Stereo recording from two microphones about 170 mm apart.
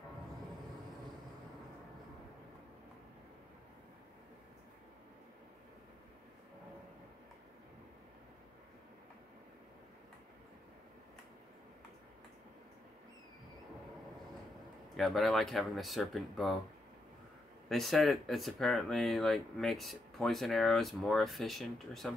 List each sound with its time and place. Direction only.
15.0 s speech: centre (ahead or behind)
17.6 s speech: centre (ahead or behind)